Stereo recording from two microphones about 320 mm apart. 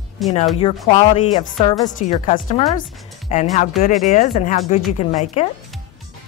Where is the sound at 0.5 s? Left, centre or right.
Centre.